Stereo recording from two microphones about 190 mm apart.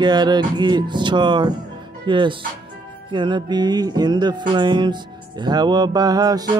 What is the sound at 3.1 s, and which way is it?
Music, 25° right (ahead or behind).